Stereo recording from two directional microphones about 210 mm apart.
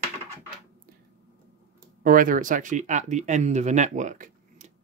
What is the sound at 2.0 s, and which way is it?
Speech, 40° right (ahead or behind).